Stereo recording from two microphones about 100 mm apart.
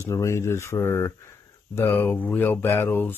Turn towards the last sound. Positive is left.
turn(degrees=20)  # may be behind; listen again after turning